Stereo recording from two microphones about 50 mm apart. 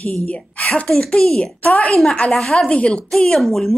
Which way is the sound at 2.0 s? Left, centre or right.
Left.